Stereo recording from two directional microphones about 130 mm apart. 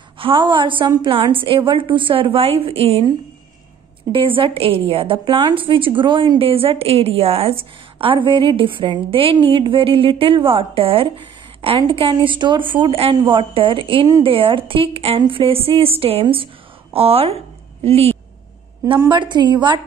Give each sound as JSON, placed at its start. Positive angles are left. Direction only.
{"t": 0.2, "sound": "a woman's voice", "side_deg": -40}
{"t": 0.8, "sound": "a woman's voice", "side_deg": -30}
{"t": 1.3, "sound": "a woman's voice", "side_deg": -40}
{"t": 4.1, "sound": "a woman's voice", "side_deg": -45}
{"t": 19.0, "sound": "a woman's voice", "side_deg": -35}